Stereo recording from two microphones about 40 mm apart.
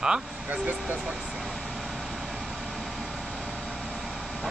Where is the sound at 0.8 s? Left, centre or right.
Right.